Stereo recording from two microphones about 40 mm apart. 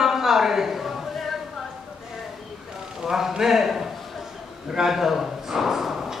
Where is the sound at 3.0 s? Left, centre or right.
Centre.